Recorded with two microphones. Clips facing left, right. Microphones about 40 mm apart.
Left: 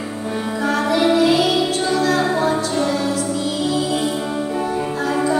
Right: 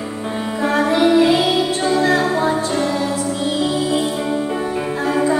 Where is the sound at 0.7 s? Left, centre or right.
Right.